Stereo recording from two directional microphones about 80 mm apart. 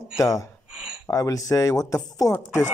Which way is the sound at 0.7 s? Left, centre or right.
Centre.